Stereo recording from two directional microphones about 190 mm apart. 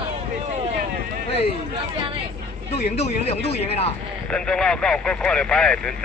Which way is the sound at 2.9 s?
35° left (ahead or behind).